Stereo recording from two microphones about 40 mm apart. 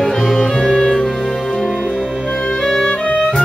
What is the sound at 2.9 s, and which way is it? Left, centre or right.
Music, left.